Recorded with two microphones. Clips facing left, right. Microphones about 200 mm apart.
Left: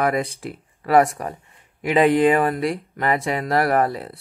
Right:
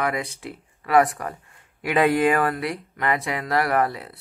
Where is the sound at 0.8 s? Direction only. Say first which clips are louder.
Left 2 dB; 30° left (ahead or behind).